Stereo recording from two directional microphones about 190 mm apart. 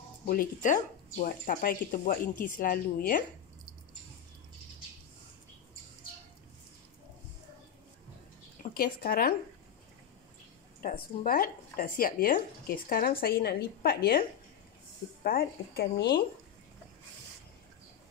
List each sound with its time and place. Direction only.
0.3 s speech: 45° left (ahead or behind)
8.7 s speech: 50° left (ahead or behind)
10.8 s a woman's voice: 45° left (ahead or behind)
15.2 s speech: 50° left (ahead or behind)